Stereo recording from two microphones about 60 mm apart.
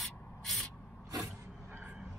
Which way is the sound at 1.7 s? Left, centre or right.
Right.